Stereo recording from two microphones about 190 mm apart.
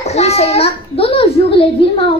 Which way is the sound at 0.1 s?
35° left (ahead or behind).